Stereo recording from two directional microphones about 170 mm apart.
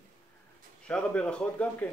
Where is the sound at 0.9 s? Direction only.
5° left (ahead or behind).